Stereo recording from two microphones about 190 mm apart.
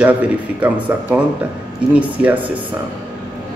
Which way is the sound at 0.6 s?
10° right (ahead or behind).